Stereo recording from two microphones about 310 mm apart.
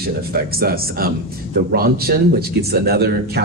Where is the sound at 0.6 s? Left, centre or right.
Right.